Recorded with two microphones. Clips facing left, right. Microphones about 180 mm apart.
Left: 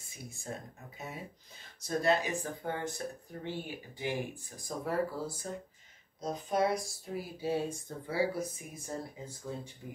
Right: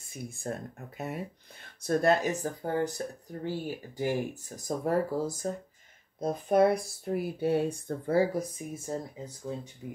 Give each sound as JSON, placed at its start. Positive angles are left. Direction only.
{"t": 0.1, "sound": "speech", "side_deg": -55}
{"t": 6.2, "sound": "speech", "side_deg": -55}
{"t": 8.4, "sound": "speech", "side_deg": -25}